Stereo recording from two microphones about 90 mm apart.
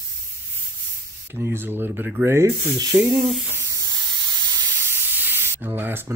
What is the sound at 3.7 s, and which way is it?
Spray, 40° right (ahead or behind).